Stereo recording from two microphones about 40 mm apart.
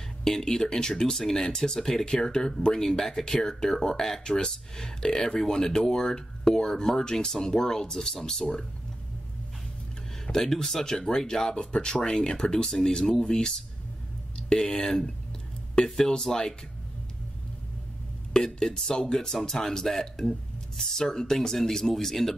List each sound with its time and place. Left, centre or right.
0.2 s speech: centre
10.3 s speech: centre
14.6 s speech: centre
18.4 s speech: centre